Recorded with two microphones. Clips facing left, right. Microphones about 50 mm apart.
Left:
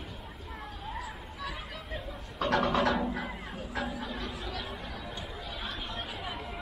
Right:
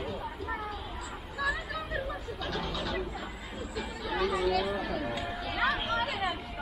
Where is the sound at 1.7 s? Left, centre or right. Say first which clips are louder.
Right 6 dB; right.